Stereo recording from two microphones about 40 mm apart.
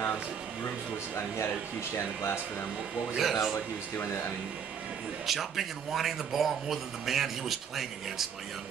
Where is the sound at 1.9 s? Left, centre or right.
Left.